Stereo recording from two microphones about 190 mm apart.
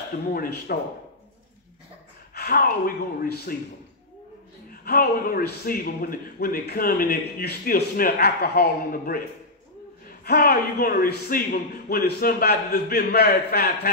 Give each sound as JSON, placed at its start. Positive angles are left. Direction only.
{"t": 0.3, "sound": "a man's voice", "side_deg": 50}
{"t": 2.3, "sound": "a man's voice", "side_deg": 50}
{"t": 4.8, "sound": "a man's voice", "side_deg": 50}
{"t": 10.2, "sound": "a man's voice", "side_deg": 55}